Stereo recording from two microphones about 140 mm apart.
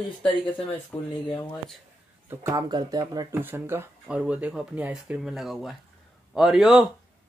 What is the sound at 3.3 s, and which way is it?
A man's voice, 15° right (ahead or behind).